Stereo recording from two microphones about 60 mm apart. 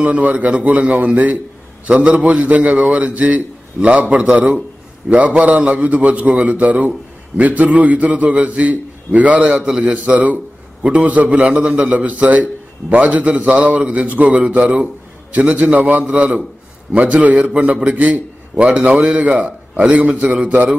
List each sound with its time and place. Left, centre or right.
0.0 s a man's voice: right
16.0 s a man's voice: centre
16.9 s a man's voice: right